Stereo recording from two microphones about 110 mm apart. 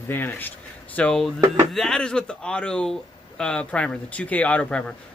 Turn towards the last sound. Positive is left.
turn(degrees=10)  # may be behind; listen again after turning